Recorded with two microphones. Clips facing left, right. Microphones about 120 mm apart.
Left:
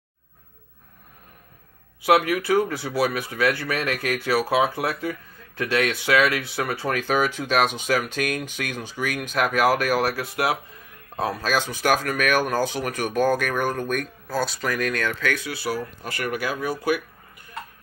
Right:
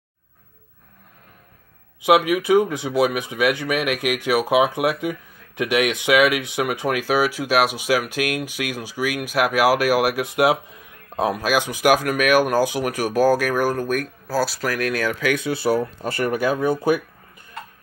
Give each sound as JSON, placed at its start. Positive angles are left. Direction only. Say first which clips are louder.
{"t": 2.0, "sound": "speech", "louder": "right 3 dB", "side_deg": -15}
{"t": 15.4, "sound": "speech", "louder": "right 8 dB", "side_deg": -25}